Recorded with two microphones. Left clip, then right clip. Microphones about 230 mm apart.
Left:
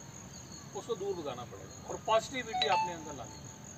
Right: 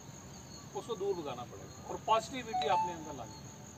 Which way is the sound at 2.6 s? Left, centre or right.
Centre.